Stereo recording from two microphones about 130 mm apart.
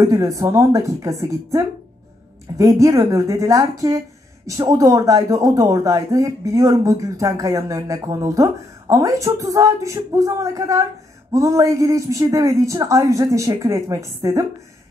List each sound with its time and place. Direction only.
0.0 s speech: 25° right (ahead or behind)